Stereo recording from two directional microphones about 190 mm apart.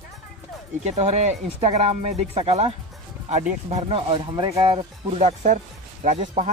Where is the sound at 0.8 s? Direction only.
35° right (ahead or behind).